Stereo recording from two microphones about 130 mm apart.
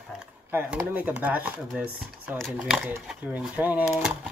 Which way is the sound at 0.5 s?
15° right (ahead or behind).